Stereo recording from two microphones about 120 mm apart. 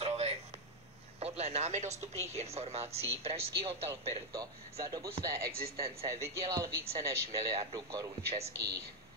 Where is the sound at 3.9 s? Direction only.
30° right (ahead or behind).